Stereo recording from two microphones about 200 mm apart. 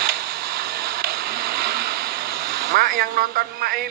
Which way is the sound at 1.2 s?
50° right (ahead or behind).